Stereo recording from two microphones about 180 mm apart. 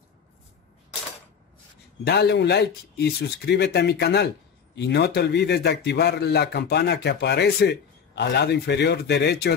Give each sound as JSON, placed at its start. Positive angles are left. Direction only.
{"t": 2.0, "sound": "a man's voice", "side_deg": 70}